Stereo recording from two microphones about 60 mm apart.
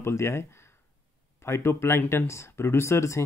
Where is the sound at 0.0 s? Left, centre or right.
Left.